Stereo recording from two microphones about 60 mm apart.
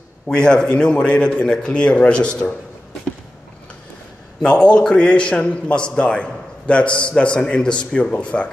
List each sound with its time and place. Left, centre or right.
0.3 s a man's voice: centre
4.4 s a man's voice: centre